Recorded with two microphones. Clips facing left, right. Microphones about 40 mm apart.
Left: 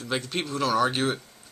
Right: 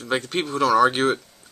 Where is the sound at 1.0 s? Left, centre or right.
Right.